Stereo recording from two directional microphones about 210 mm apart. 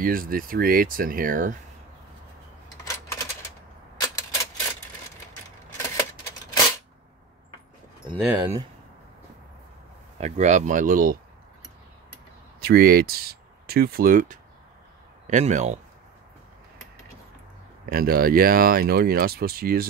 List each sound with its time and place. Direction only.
0.0 s speech: 45° right (ahead or behind)
2.8 s coin: 15° left (ahead or behind)
4.0 s typewriter: 15° left (ahead or behind)
5.8 s typewriter: 15° left (ahead or behind)
8.1 s speech: centre (ahead or behind)
10.1 s speech: 30° right (ahead or behind)
12.6 s speech: 50° right (ahead or behind)
17.8 s speech: 45° right (ahead or behind)